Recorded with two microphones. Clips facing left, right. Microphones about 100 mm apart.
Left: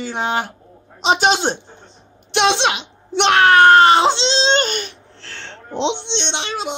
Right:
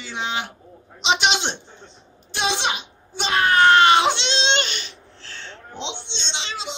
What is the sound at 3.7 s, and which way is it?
Baby cry, 40° left (ahead or behind).